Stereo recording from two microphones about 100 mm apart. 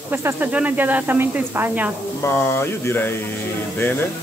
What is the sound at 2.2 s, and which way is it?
Speech, 25° left (ahead or behind).